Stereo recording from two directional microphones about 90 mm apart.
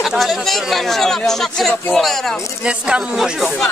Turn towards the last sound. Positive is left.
turn(degrees=-5)  # may be behind; listen again after turning